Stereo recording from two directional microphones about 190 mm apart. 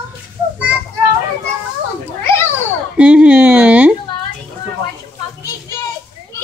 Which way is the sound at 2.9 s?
5° right (ahead or behind).